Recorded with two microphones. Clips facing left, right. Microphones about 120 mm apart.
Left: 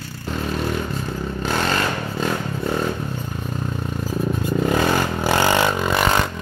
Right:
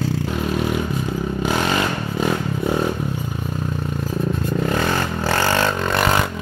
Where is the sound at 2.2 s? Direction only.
10° right (ahead or behind).